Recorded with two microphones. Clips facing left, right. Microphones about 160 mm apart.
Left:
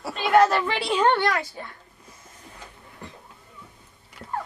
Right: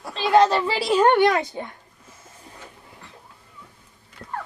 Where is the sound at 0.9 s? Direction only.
10° right (ahead or behind).